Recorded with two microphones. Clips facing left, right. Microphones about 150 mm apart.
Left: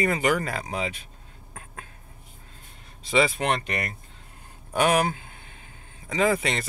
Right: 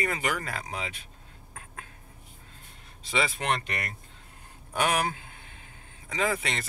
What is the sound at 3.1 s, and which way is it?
Speech, 15° left (ahead or behind).